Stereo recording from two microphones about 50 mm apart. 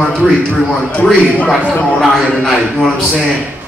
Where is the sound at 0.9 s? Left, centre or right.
Left.